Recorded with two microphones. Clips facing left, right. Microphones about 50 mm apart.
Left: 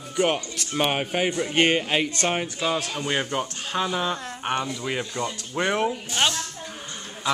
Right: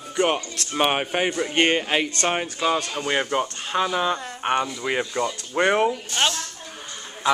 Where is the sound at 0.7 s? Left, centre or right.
Centre.